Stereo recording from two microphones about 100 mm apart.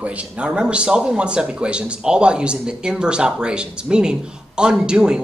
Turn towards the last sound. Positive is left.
turn(degrees=-5)  # may be behind; listen again after turning